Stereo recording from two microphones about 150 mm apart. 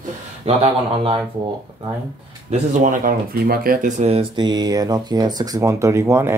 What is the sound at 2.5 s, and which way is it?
Speech, 55° right (ahead or behind).